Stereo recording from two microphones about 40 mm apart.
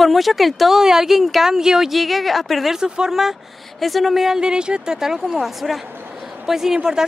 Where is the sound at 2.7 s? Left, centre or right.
Centre.